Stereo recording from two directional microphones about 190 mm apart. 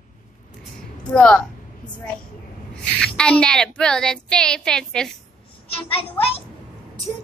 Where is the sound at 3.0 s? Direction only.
5° left (ahead or behind).